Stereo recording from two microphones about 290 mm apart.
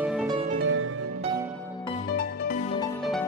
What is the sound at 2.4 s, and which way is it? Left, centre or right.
Music, left.